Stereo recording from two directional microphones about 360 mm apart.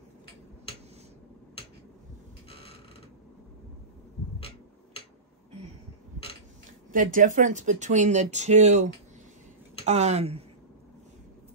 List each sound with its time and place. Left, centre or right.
6.9 s speech: right